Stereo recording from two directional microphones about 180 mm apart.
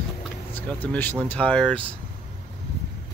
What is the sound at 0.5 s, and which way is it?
Speech, 10° left (ahead or behind).